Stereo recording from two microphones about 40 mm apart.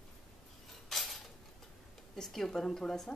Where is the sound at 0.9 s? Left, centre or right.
Centre.